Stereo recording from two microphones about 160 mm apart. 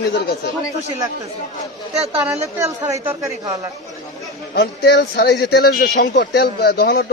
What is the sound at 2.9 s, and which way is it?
Speech, 20° right (ahead or behind).